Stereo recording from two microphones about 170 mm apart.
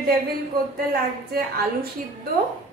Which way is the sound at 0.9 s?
65° right (ahead or behind).